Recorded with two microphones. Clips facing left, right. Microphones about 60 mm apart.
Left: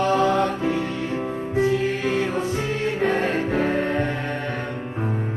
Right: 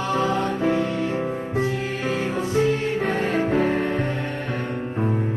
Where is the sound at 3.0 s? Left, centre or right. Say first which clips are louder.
Left 2 dB; left.